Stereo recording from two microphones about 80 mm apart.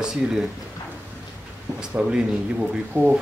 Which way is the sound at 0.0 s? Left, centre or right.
Centre.